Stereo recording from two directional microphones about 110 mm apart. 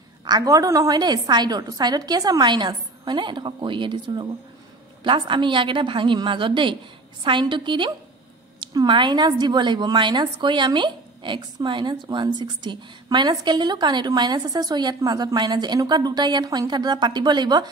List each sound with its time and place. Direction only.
0.2 s a woman's voice: 35° right (ahead or behind)